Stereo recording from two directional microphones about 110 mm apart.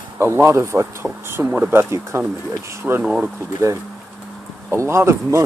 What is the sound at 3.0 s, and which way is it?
Speech, 5° right (ahead or behind).